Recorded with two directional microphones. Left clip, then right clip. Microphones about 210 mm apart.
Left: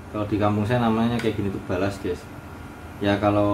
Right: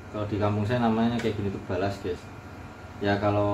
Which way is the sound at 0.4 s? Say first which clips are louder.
Left 3 dB; 15° left (ahead or behind).